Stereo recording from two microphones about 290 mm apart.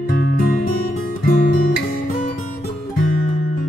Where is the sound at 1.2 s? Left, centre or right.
Left.